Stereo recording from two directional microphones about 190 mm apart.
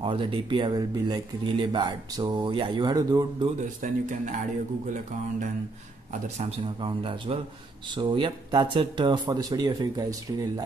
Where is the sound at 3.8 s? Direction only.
40° right (ahead or behind).